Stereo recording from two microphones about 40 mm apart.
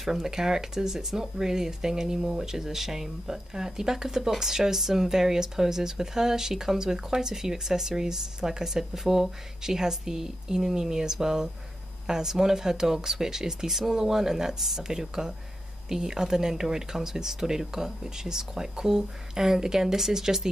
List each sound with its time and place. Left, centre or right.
0.0 s speech: centre